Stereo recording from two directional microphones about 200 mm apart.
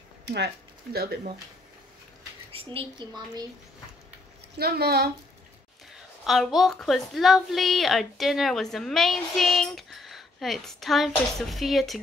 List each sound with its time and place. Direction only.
0.2 s a sound: 60° right (ahead or behind)
0.9 s a woman's voice: 50° right (ahead or behind)
2.5 s a woman's voice: 25° right (ahead or behind)
4.6 s a woman's voice: 50° right (ahead or behind)
6.2 s a woman's voice: centre (ahead or behind)